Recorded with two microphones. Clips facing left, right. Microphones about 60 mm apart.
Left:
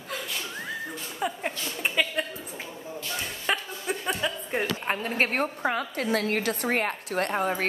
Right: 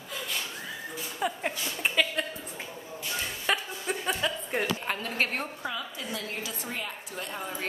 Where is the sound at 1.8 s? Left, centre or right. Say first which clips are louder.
Left 1 dB; centre.